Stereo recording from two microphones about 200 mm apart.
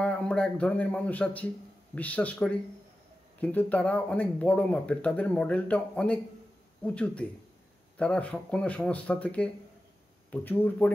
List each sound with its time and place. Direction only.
0.0 s speech: 5° left (ahead or behind)